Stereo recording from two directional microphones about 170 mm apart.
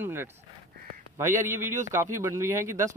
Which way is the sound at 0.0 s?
15° right (ahead or behind).